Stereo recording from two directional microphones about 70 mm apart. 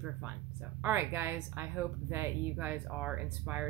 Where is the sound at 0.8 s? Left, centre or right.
Right.